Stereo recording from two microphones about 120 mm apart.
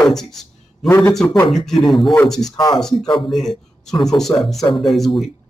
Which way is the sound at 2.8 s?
5° left (ahead or behind).